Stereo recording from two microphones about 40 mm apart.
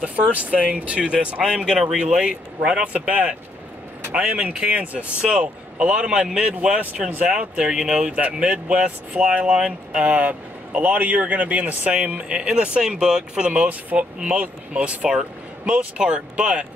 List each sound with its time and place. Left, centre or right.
0.0 s speech: right
1.4 s speech: centre
10.0 s speech: right
10.8 s speech: right